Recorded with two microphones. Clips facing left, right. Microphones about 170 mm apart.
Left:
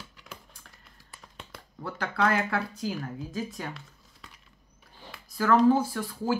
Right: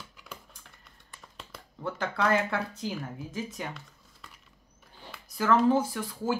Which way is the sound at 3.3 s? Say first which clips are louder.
Left 1 dB; 20° right (ahead or behind).